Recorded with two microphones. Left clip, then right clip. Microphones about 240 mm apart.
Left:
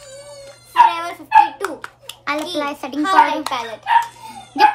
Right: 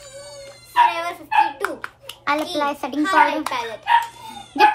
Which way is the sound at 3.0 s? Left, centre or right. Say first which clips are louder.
Left 3 dB; centre.